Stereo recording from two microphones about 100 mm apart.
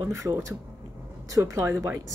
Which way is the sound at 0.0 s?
30° right (ahead or behind).